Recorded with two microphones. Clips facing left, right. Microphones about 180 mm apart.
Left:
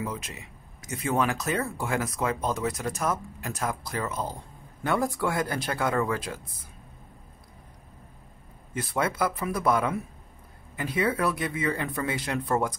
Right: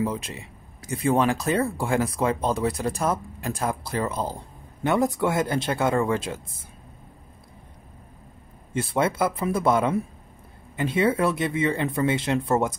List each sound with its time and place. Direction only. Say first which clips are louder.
0.0 s speech: right 7 dB; 30° right (ahead or behind)
8.7 s speech: right 4 dB; 25° right (ahead or behind)